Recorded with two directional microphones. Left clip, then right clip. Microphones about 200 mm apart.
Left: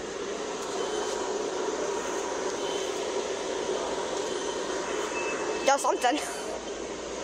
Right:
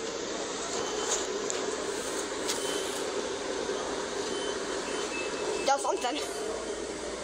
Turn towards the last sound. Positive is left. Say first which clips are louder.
# left 4 dB
turn(degrees=30)  # may be behind; listen again after turning